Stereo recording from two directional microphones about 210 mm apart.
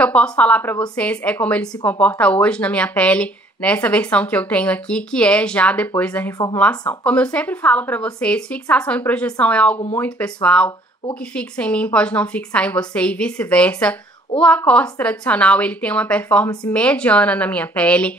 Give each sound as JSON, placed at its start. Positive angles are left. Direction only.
{"t": 0.0, "sound": "a woman's voice", "side_deg": 5}
{"t": 6.3, "sound": "speech", "side_deg": 15}
{"t": 7.1, "sound": "a woman's voice", "side_deg": 5}